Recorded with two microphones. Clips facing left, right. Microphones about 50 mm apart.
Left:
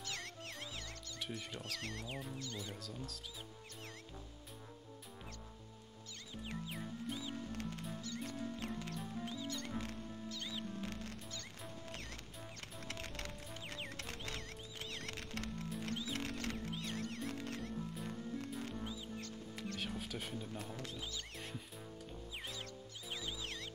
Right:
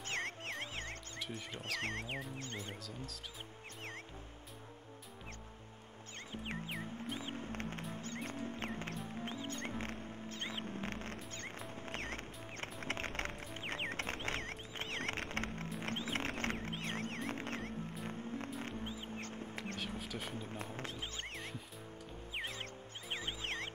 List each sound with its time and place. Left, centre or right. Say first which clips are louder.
0.0 s music: right 6 dB; right
1.3 s speech: right 4 dB; right
2.8 s speech: even; centre
6.5 s music: right 1 dB; right
15.8 s a sound: right 4 dB; right
20.1 s a sound: right 1 dB; centre
20.3 s a sound: right 1 dB; right
21.0 s music: right 2 dB; right
21.4 s music: right 2 dB; centre
22.3 s music: right 6 dB; right